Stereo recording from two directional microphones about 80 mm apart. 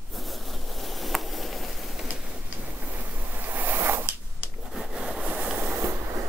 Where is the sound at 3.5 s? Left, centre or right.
Right.